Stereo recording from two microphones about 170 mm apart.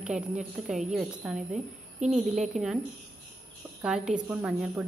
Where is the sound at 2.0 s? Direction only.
45° right (ahead or behind).